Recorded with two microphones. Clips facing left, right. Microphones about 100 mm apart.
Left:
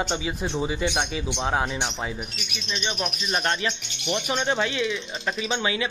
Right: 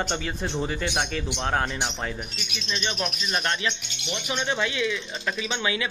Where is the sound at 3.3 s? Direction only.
25° left (ahead or behind).